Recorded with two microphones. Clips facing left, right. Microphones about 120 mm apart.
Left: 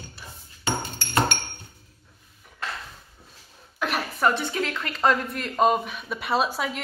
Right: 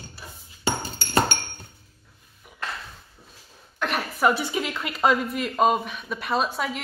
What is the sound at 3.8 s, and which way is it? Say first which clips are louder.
A woman's voice: right 1 dB; centre (ahead or behind).